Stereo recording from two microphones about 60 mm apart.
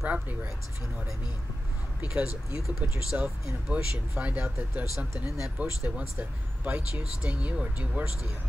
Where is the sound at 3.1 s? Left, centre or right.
Centre.